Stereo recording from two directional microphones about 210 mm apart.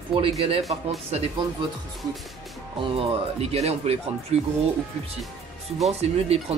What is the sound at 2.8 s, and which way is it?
Speech, 25° right (ahead or behind).